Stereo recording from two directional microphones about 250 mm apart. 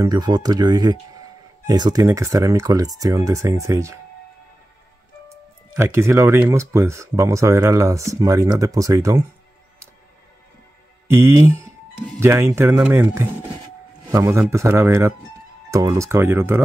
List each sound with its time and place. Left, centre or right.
0.0 s speech: centre
5.7 s speech: centre
11.1 s a man's voice: centre